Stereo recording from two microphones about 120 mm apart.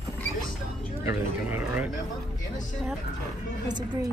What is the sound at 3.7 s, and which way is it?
Speech, 35° right (ahead or behind).